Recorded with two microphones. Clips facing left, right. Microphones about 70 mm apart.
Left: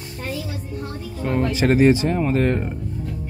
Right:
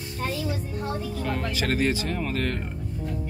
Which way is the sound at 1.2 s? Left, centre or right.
Left.